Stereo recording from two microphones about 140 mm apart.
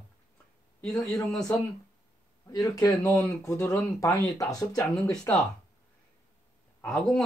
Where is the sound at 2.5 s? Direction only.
25° left (ahead or behind).